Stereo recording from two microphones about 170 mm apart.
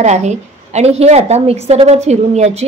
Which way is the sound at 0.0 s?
40° right (ahead or behind).